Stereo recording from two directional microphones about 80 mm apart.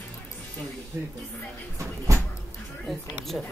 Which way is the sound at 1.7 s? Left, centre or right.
Right.